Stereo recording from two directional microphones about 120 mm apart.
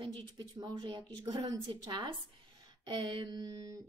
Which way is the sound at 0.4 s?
40° right (ahead or behind).